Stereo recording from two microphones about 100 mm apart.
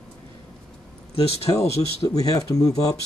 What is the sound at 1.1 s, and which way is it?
Speech, 80° left.